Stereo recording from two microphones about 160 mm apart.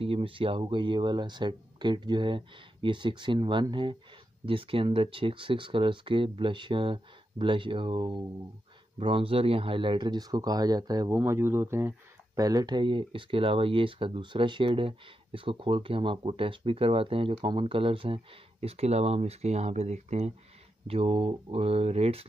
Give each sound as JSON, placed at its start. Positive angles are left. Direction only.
{"t": 0.0, "sound": "speech", "side_deg": -35}